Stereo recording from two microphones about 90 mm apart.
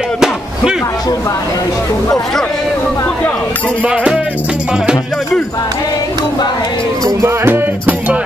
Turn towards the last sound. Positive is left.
turn(degrees=-30)  # may be behind; listen again after turning